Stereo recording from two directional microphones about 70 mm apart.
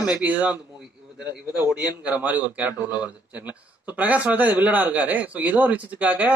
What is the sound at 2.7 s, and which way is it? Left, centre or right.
Speech, left.